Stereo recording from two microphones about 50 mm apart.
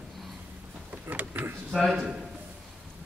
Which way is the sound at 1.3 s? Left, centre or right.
Right.